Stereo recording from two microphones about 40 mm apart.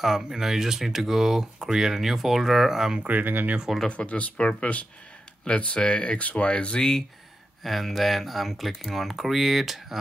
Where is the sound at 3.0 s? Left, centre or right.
Right.